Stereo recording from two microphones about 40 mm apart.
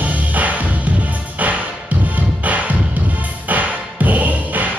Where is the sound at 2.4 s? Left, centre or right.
Right.